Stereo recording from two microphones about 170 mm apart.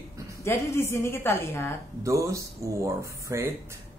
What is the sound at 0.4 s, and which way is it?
A woman's voice, 15° left (ahead or behind).